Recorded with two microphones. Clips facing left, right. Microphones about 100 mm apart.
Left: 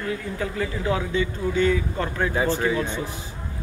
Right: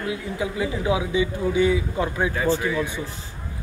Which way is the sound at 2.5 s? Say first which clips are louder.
Left 1 dB; 20° left (ahead or behind).